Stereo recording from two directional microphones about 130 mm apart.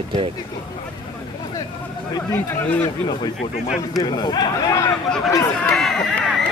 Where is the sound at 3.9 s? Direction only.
30° left (ahead or behind).